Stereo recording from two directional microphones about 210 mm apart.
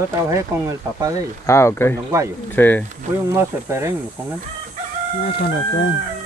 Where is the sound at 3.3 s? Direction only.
15° right (ahead or behind).